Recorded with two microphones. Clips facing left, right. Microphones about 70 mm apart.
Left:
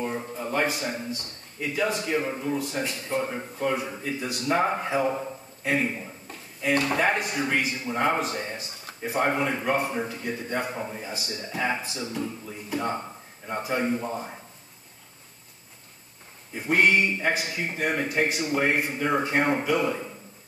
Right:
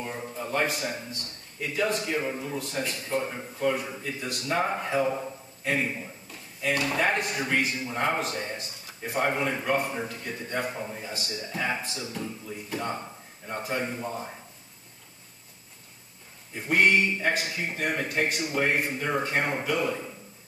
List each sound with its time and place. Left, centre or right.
0.0 s a sound: centre
0.5 s a man's voice: centre
4.5 s a man's voice: centre
6.7 s speech: left
7.0 s a man's voice: centre
16.6 s a man's voice: centre
17.3 s a man's voice: centre